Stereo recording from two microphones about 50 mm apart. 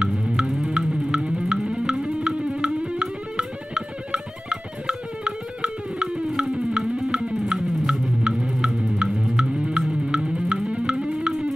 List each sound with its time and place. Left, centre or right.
0.0 s music: centre